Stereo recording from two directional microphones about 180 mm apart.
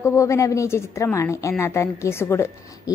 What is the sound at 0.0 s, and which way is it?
A woman's voice, 15° left (ahead or behind).